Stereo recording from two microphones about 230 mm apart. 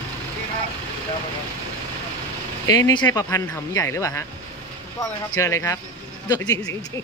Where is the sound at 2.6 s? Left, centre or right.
Centre.